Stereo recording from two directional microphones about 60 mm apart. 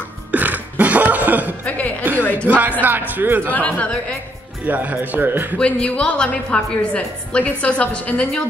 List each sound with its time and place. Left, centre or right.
0.3 s music: right
1.7 s music: left
2.3 s speech: right
3.5 s a woman's voice: left
4.6 s a man's voice: right
5.6 s a woman's voice: centre